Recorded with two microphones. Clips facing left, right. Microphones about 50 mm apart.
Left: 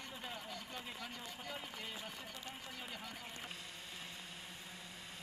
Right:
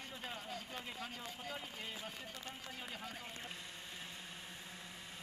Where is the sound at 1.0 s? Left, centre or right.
Right.